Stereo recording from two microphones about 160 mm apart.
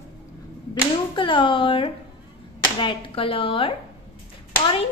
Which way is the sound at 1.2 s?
30° left (ahead or behind).